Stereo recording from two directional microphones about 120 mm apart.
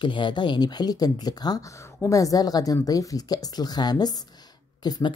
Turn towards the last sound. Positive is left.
turn(degrees=35)  # may be behind; listen again after turning